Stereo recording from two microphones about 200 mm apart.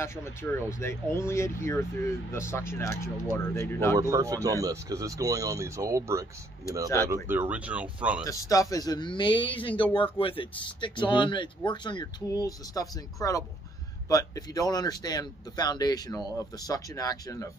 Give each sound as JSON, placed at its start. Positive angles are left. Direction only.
{"t": 0.0, "sound": "speech", "side_deg": 15}
{"t": 4.1, "sound": "speech", "side_deg": -15}
{"t": 7.2, "sound": "speech", "side_deg": -10}
{"t": 8.3, "sound": "speech", "side_deg": 15}